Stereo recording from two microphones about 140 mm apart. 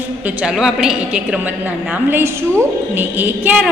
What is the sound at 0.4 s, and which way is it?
A woman's voice, 5° right (ahead or behind).